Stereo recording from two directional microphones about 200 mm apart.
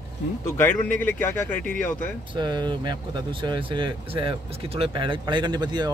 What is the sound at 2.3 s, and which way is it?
Speech, 20° right (ahead or behind).